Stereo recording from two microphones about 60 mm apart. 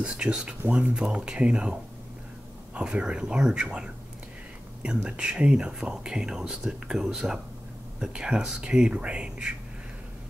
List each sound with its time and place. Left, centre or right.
0.0 s speech: centre